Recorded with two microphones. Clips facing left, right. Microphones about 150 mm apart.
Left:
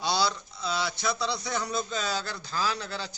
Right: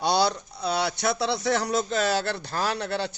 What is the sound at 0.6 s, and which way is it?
Speech, 65° right (ahead or behind).